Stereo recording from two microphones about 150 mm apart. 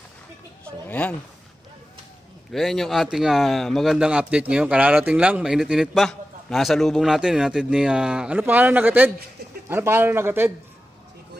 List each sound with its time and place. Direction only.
0.8 s speech: 10° left (ahead or behind)
2.5 s a man's voice: centre (ahead or behind); by 10.5 s 15° right (ahead or behind)